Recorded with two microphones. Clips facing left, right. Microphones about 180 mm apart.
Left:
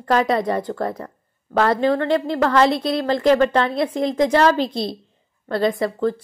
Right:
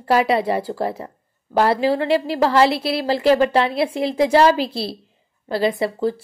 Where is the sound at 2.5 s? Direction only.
10° right (ahead or behind).